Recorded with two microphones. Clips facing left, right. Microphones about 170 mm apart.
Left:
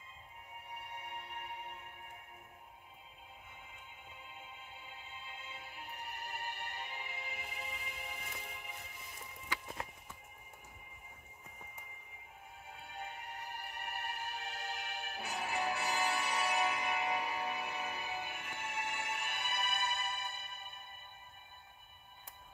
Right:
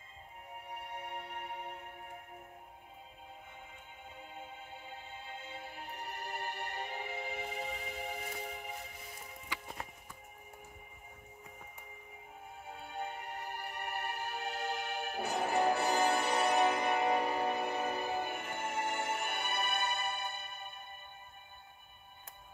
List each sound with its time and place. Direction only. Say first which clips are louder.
0.7 s music: right 4 dB; 45° right (ahead or behind)
4.2 s music: right 7 dB; 45° right (ahead or behind)
12.7 s music: right 6 dB; 50° right (ahead or behind)